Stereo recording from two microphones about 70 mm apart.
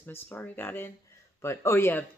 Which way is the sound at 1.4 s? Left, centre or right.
Left.